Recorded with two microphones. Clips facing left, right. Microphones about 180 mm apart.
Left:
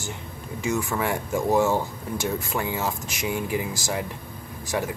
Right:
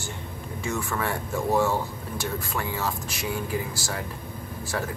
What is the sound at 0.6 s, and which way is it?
Speech, 15° left (ahead or behind).